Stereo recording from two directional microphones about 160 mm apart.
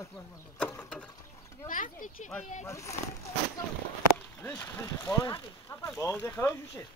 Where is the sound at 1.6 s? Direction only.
55° left (ahead or behind).